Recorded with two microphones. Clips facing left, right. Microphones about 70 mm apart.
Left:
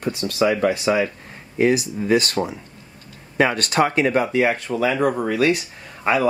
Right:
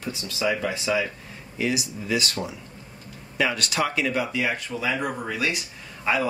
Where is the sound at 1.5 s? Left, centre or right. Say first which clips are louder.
Left 8 dB; left.